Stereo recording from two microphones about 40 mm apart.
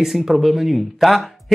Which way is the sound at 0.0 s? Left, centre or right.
Centre.